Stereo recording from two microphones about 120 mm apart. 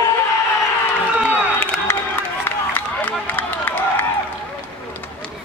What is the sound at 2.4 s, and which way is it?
Run, 15° left (ahead or behind).